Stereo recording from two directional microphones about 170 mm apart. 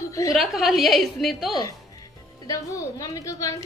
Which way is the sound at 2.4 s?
20° left (ahead or behind).